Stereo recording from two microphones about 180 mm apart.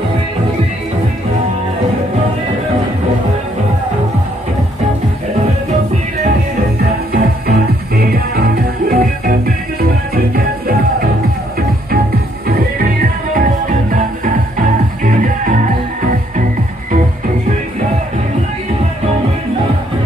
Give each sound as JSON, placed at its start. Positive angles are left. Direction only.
{"t": 7.1, "sound": "music", "side_deg": -55}
{"t": 12.4, "sound": "music", "side_deg": -55}